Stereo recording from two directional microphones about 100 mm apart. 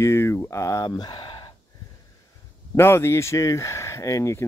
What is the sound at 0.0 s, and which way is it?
Speech, 25° left (ahead or behind).